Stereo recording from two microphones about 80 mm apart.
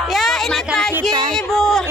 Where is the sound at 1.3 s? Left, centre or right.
Centre.